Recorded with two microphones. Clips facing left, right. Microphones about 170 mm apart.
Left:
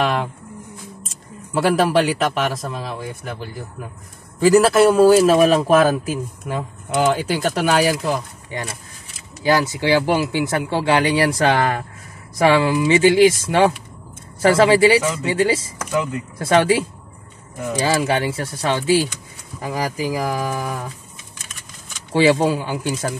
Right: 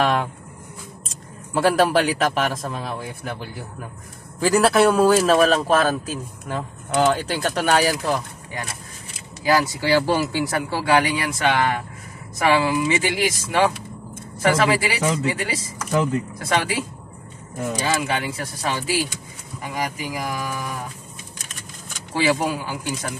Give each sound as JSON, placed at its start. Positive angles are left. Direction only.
{"t": 0.0, "sound": "a sound", "side_deg": 0}
{"t": 1.5, "sound": "a man's voice", "side_deg": 0}
{"t": 9.4, "sound": "speech", "side_deg": 25}
{"t": 22.1, "sound": "speech", "side_deg": 30}